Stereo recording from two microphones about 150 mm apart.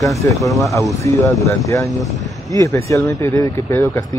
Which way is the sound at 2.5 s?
20° left (ahead or behind).